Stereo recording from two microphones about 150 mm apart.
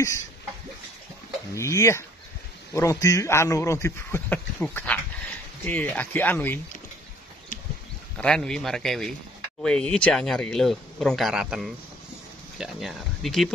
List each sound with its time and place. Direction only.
1.5 s a man's voice: 20° left (ahead or behind)
8.2 s speech: 5° left (ahead or behind)